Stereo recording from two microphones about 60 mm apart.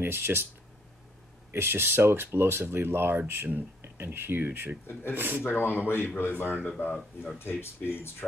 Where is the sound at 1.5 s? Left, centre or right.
Right.